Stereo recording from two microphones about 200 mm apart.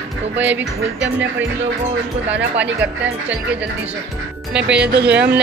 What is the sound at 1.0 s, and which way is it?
Speech, 65° right (ahead or behind).